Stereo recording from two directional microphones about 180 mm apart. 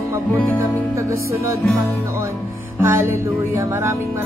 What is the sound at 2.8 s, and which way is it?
Music, 15° right (ahead or behind).